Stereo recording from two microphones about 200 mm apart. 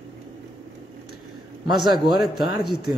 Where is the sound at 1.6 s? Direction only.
20° right (ahead or behind).